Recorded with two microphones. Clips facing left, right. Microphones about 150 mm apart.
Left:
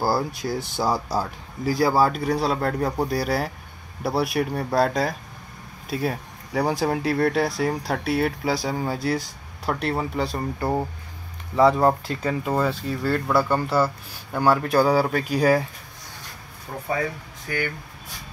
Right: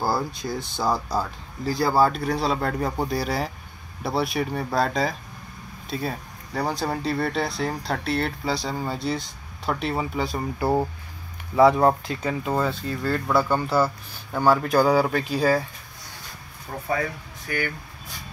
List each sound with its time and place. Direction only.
0.0 s speech: 5° left (ahead or behind)